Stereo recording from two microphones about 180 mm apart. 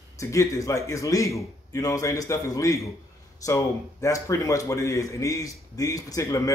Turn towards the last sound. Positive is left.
turn(degrees=20)  # may be behind; listen again after turning